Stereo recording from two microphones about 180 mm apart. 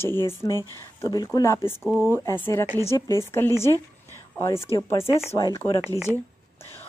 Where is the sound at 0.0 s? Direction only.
15° left (ahead or behind).